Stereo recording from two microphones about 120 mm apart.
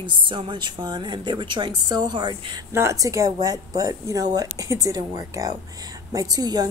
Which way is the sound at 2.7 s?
25° right (ahead or behind).